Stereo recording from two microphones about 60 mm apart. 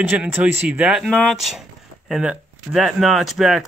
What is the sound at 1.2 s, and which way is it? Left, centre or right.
Speech, centre.